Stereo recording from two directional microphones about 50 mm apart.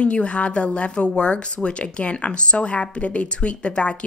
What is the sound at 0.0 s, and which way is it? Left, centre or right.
Speech, left.